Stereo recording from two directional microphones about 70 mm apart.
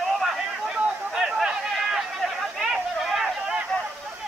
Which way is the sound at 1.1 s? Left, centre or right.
Centre.